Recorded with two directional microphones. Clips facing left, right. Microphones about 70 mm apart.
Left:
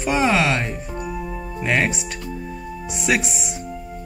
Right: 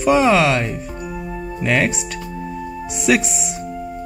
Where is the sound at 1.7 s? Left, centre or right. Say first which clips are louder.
Right 2 dB; centre.